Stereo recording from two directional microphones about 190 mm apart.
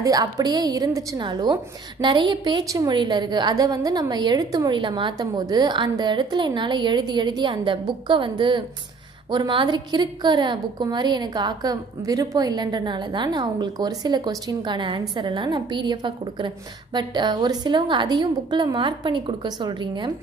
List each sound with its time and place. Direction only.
0.0 s a woman's voice: 20° right (ahead or behind)